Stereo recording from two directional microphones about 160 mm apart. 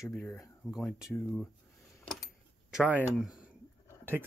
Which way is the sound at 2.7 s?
5° right (ahead or behind).